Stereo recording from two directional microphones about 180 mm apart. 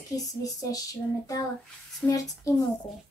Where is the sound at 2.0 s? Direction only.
5° left (ahead or behind).